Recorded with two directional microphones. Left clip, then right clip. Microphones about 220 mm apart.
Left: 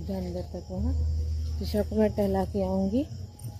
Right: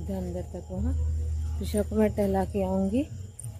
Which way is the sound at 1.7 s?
Centre (ahead or behind).